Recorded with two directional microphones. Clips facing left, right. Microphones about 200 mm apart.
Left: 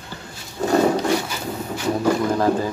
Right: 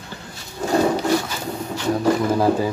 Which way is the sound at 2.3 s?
10° right (ahead or behind).